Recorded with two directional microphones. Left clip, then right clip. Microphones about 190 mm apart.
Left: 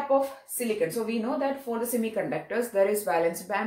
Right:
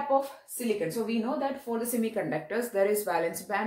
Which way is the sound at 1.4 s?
20° right (ahead or behind).